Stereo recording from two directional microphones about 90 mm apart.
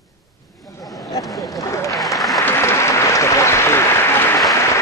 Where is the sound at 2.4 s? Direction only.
30° left (ahead or behind).